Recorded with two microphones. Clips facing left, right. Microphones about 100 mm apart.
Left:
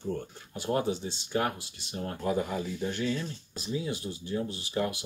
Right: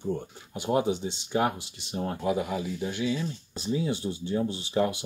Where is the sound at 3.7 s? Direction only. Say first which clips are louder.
Right 5 dB; 25° right (ahead or behind).